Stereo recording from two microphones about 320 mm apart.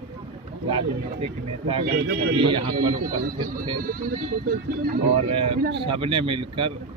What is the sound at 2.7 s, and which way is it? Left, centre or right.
Speech, right.